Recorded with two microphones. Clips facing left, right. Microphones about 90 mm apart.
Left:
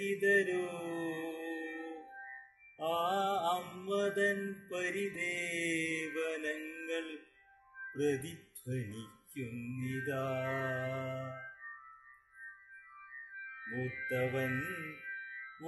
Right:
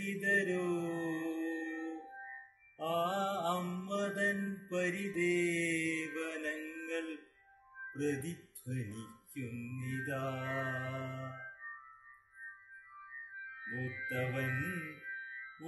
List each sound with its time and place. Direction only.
0.0 s mantra: 15° right (ahead or behind)
8.0 s speech: 15° right (ahead or behind)
8.8 s mantra: 10° right (ahead or behind)
12.9 s music: 10° right (ahead or behind)